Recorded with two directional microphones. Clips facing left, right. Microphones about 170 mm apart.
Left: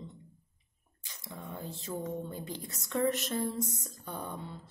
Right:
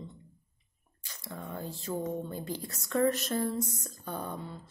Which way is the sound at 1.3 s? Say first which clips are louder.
Right 3 dB; 20° left (ahead or behind).